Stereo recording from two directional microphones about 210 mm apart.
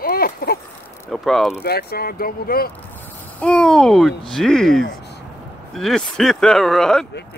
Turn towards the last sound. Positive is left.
turn(degrees=0)  # may be behind; listen again after turning